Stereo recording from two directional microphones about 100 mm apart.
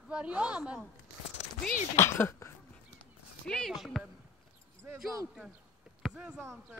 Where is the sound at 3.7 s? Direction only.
Centre (ahead or behind).